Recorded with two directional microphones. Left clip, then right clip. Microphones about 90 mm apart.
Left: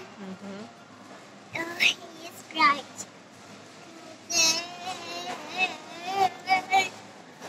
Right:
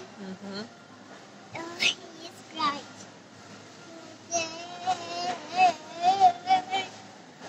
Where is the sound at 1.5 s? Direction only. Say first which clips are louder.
Left 3 dB; 30° right (ahead or behind).